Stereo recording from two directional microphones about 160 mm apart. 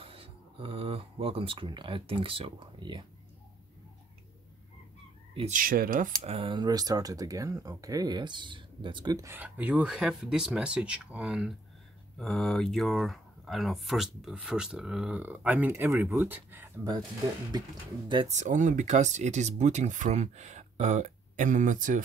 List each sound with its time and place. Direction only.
0.0 s speech: 35° right (ahead or behind)
5.5 s speech: 60° right (ahead or behind)
6.2 s speech: 35° right (ahead or behind); by 17.0 s 20° right (ahead or behind)
18.0 s speech: 30° right (ahead or behind)
18.3 s speech: 50° right (ahead or behind)